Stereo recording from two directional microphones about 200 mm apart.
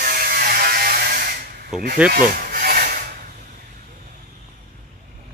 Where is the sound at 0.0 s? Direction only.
45° right (ahead or behind).